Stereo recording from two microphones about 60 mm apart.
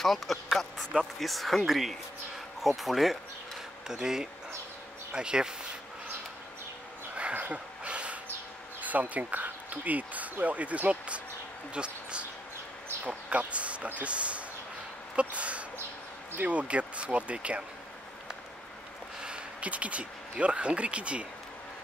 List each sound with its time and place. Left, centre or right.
0.0 s speech: centre
7.2 s a sound: right
8.8 s speech: right
19.2 s speech: centre